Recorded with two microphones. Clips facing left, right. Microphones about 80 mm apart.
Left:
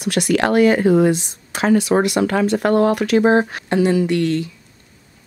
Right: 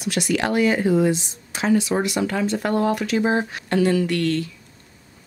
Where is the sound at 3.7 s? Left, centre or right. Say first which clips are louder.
Left 3 dB; centre.